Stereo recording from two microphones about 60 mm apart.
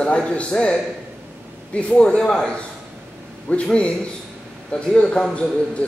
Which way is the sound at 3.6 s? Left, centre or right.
Centre.